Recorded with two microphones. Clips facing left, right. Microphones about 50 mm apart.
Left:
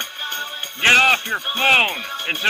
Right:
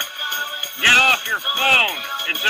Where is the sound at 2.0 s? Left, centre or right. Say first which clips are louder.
Right 1 dB; right.